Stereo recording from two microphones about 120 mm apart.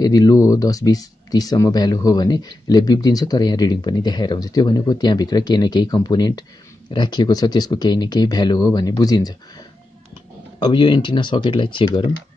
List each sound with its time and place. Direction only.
0.0 s speech: 30° left (ahead or behind)